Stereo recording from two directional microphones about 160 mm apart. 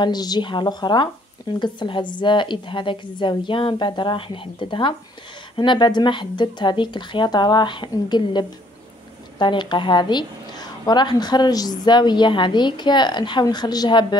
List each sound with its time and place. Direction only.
0.0 s a woman's voice: 25° left (ahead or behind)